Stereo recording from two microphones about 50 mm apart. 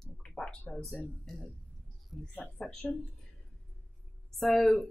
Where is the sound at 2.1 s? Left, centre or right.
Centre.